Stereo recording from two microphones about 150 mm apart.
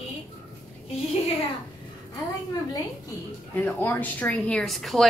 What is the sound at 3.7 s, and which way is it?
A woman's voice, 10° left (ahead or behind).